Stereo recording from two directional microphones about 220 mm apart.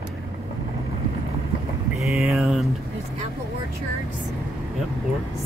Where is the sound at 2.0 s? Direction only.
5° right (ahead or behind).